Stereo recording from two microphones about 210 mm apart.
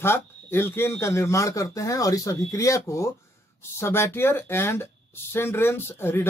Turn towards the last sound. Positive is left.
turn(degrees=10)  # may be behind; listen again after turning